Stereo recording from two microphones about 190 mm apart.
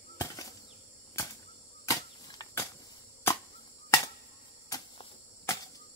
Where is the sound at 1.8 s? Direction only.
20° left (ahead or behind).